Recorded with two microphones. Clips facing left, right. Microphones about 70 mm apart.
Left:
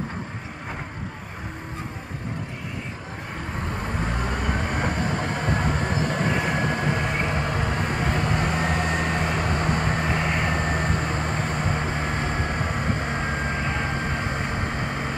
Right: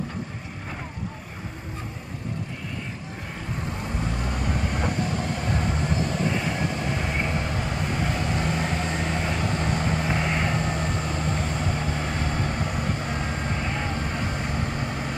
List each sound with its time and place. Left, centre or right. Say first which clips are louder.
3.8 s vehicle: left 3 dB; left